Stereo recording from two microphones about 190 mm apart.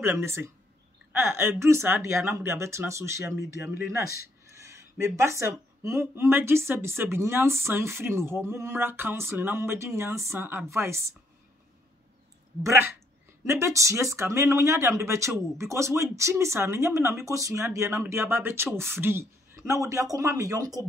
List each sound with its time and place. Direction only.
0.0 s speech: 15° right (ahead or behind)
13.5 s speech: 15° right (ahead or behind)